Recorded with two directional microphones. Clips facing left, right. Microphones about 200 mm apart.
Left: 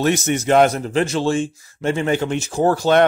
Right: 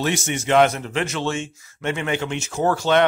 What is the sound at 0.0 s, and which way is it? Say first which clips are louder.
A man's voice: left 5 dB; 40° left (ahead or behind).